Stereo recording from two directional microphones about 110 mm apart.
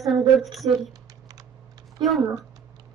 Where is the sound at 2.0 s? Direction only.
45° right (ahead or behind).